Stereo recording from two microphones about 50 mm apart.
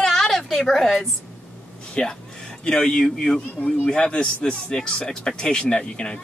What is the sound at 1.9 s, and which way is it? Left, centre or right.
Music, centre.